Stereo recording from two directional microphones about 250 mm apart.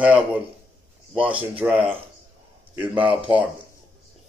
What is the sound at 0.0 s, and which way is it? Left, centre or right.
Speech, centre.